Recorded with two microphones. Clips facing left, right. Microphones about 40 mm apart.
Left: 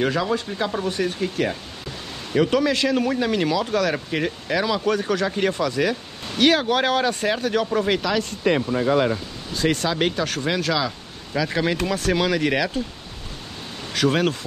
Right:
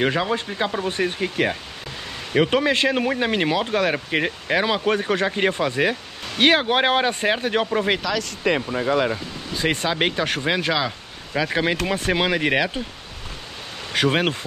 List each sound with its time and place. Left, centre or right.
0.0 s speech: right
8.2 s speech: right
9.6 s speech: right
13.9 s speech: right